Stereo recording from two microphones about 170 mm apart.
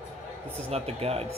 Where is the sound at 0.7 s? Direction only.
35° right (ahead or behind).